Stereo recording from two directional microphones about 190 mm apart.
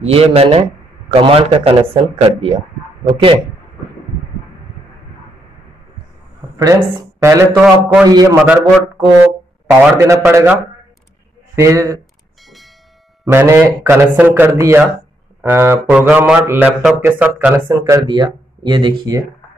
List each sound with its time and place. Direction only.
0.0 s speech: 30° right (ahead or behind)
6.6 s speech: 15° right (ahead or behind)
8.1 s speech: 20° right (ahead or behind)
11.6 s speech: 15° right (ahead or behind)
13.2 s speech: 10° right (ahead or behind)
17.6 s speech: 20° right (ahead or behind)